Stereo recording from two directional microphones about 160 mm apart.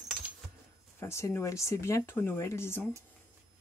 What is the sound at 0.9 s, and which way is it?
Speech, 15° left (ahead or behind).